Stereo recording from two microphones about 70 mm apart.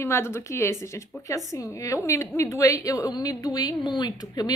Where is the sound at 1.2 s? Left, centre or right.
Left.